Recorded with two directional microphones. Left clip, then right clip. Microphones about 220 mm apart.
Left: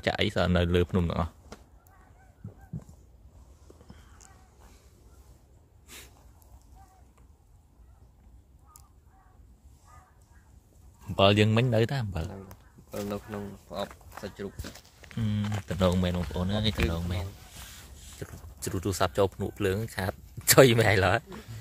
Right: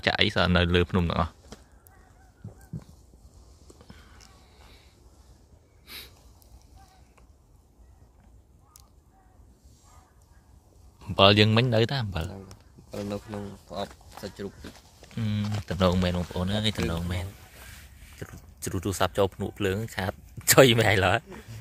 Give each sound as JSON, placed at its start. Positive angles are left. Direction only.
{"t": 0.0, "sound": "speech", "side_deg": 0}
{"t": 1.5, "sound": "chop", "side_deg": 5}
{"t": 5.9, "sound": "snort", "side_deg": 0}
{"t": 11.1, "sound": "speech", "side_deg": -5}
{"t": 14.2, "sound": "speech", "side_deg": -30}
{"t": 15.1, "sound": "speech", "side_deg": 5}